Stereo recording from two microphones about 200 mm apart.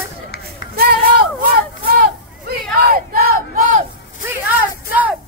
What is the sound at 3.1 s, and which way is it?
Crowd, 45° right (ahead or behind).